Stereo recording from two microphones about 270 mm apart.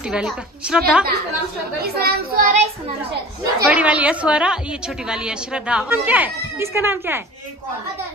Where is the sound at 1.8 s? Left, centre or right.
Right.